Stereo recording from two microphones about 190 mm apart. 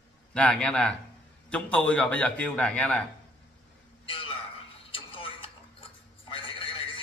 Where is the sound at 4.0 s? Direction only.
30° left (ahead or behind).